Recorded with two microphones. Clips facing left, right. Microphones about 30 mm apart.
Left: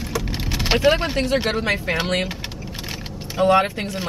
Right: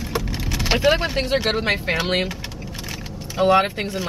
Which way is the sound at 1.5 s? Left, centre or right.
Centre.